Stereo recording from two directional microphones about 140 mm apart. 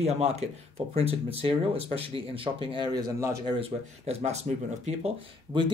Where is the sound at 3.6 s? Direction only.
45° right (ahead or behind).